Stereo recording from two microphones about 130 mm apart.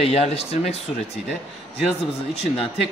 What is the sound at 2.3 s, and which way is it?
Speech, 50° left (ahead or behind).